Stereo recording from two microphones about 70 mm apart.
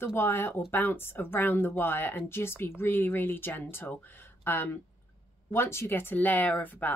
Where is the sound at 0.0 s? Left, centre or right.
Left.